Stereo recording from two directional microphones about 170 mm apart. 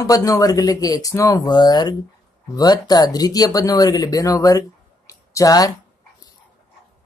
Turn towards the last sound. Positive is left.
turn(degrees=20)  # may be behind; listen again after turning